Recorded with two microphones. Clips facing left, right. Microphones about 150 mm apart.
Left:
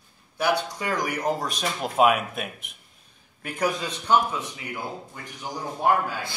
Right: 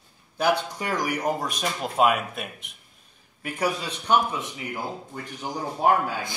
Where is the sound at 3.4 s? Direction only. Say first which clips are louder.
Even; 10° right (ahead or behind).